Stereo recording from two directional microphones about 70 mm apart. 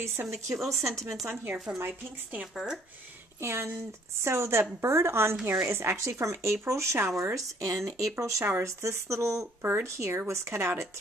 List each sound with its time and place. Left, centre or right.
0.2 s speech: right
1.8 s speech: right
2.5 s speech: centre
3.3 s a woman's voice: right
9.6 s speech: right
9.8 s speech: right